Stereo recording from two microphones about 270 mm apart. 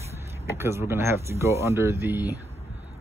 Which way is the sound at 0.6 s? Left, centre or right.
Centre.